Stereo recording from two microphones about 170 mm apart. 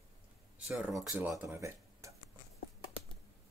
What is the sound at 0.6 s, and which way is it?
Speech, 5° right (ahead or behind).